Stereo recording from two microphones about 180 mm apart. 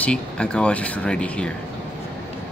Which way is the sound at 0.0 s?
5° left (ahead or behind).